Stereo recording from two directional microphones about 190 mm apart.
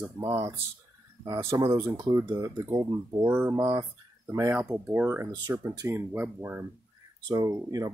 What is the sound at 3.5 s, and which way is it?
Speech, 20° right (ahead or behind).